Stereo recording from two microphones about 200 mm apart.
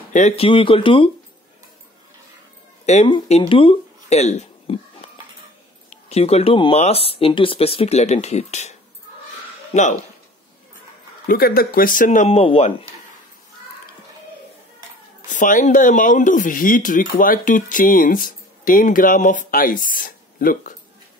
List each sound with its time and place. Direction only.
0.1 s speech: 30° left (ahead or behind)
2.8 s speech: 35° left (ahead or behind)
9.8 s speech: 35° left (ahead or behind)
11.2 s speech: 50° left (ahead or behind); by 12.7 s 30° left (ahead or behind)
15.2 s speech: 40° left (ahead or behind)